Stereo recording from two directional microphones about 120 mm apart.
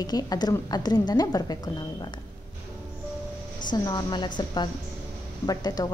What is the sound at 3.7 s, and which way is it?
A woman's voice, 35° left (ahead or behind).